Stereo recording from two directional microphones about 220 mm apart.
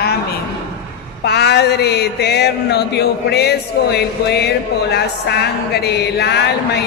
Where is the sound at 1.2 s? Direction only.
50° left (ahead or behind).